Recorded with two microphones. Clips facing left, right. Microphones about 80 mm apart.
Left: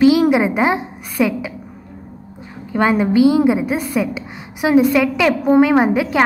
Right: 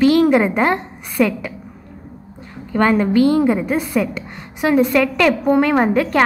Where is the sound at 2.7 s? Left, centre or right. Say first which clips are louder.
Even; centre.